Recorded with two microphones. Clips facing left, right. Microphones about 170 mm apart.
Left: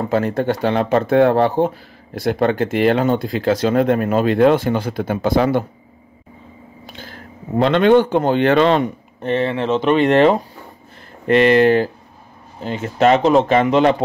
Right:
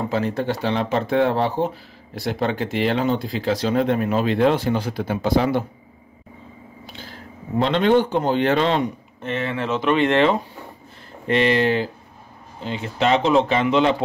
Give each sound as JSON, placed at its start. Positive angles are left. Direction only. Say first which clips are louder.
{"t": 0.1, "sound": "speech", "louder": "left 5 dB", "side_deg": 50}
{"t": 7.0, "sound": "speech", "louder": "left 2 dB", "side_deg": 55}
{"t": 9.2, "sound": "speech", "louder": "left 6 dB", "side_deg": 35}
{"t": 11.2, "sound": "speech", "louder": "left 6 dB", "side_deg": 55}